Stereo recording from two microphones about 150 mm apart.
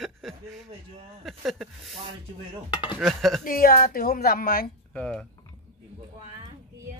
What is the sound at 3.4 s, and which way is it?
Speech, 75° left (ahead or behind).